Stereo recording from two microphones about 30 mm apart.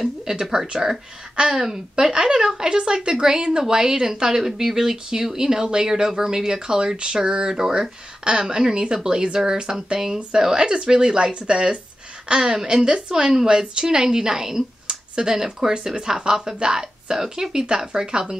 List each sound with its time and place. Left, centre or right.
0.0 s speech: centre
2.0 s speech: right